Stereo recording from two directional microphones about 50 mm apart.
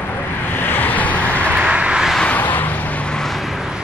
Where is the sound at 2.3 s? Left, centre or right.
Left.